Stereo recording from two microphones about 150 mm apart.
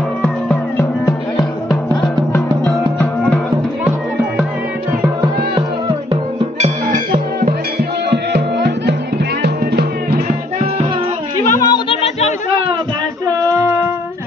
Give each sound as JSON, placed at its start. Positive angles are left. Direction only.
{"t": 0.2, "sound": "music", "side_deg": 15}
{"t": 6.6, "sound": "music", "side_deg": -65}
{"t": 9.4, "sound": "music", "side_deg": -90}
{"t": 11.5, "sound": "music", "side_deg": 25}
{"t": 11.9, "sound": "music", "side_deg": 45}
{"t": 13.3, "sound": "music", "side_deg": -20}